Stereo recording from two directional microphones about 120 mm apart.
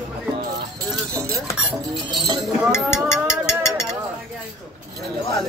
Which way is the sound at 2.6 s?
5° right (ahead or behind).